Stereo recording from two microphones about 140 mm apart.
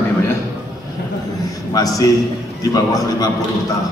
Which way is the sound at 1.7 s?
25° left (ahead or behind).